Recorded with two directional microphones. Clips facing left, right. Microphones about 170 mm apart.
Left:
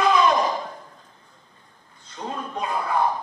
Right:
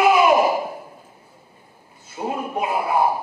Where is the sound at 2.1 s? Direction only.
10° right (ahead or behind).